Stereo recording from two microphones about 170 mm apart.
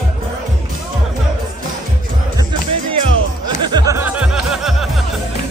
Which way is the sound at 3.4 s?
25° right (ahead or behind).